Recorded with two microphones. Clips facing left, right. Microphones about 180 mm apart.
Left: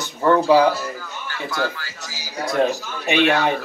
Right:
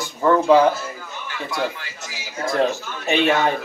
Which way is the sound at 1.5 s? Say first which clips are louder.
Even; 20° right (ahead or behind).